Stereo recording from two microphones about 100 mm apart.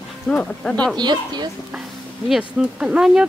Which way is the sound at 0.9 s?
45° right (ahead or behind).